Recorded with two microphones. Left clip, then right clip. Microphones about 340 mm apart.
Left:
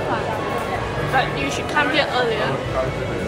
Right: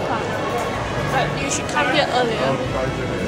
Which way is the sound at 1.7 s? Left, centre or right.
Centre.